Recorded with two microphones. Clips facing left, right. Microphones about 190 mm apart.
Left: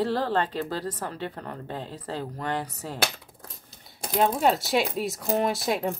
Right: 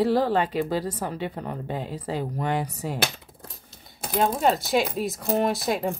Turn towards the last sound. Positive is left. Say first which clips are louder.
# right 1 dB
turn(degrees=0)  # may be behind; listen again after turning